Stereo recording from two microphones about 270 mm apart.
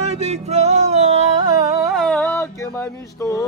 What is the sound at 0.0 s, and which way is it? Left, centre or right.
Music, right.